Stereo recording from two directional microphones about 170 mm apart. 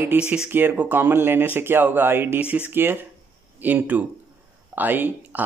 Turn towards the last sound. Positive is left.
turn(degrees=-10)  # may be behind; listen again after turning